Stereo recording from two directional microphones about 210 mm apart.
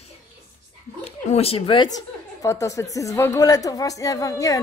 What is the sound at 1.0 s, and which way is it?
Speech, 30° left (ahead or behind).